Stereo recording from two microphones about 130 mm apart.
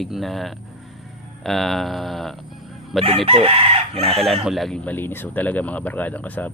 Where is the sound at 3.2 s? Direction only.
45° right (ahead or behind).